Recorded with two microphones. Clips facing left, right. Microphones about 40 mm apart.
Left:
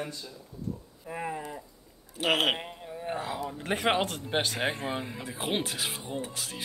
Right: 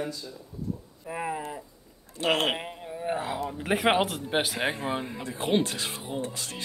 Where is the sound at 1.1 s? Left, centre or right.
Centre.